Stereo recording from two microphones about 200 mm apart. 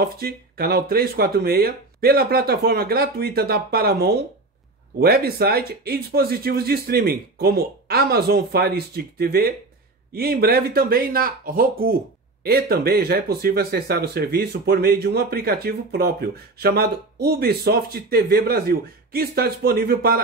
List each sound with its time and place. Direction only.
0.0 s speech: 50° right (ahead or behind)